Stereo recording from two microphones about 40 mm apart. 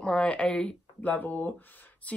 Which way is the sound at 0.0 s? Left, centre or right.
Left.